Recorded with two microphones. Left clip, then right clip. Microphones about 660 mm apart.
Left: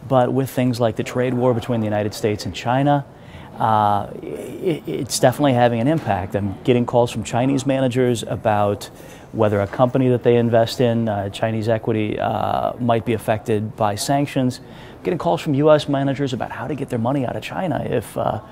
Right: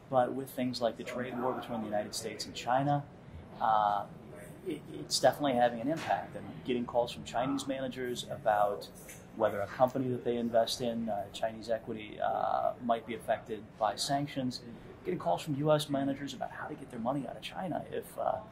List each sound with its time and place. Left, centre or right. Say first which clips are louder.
0.1 s speech: left 13 dB; left